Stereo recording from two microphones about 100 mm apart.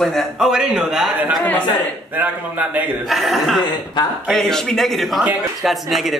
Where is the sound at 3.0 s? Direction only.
Centre (ahead or behind).